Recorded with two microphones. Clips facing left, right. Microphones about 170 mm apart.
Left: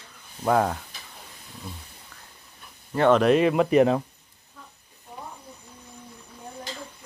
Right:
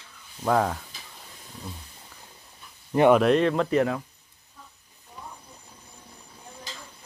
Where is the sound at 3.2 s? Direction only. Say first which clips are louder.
Left 2 dB; 5° left (ahead or behind).